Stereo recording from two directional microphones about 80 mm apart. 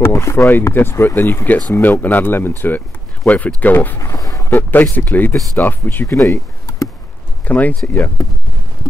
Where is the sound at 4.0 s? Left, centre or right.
Left.